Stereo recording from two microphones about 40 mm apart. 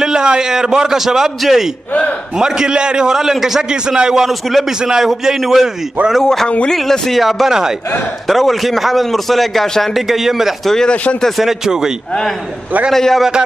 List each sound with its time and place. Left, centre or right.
0.0 s a man's voice: centre
2.3 s a man's voice: centre
3.7 s a man's voice: right
4.3 s a man's voice: centre
4.6 s a man's voice: centre
6.2 s a man's voice: centre
10.6 s speech: centre
11.3 s a man's voice: centre
12.9 s speech: centre